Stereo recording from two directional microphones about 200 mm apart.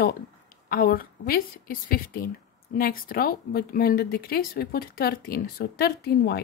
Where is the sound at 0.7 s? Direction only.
45° left (ahead or behind).